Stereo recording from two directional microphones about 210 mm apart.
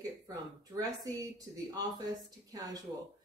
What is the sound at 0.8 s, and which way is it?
Speech, 15° right (ahead or behind).